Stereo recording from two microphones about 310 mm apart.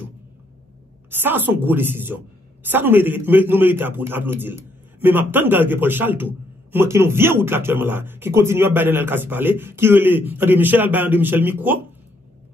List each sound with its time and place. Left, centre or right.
1.1 s a man's voice: centre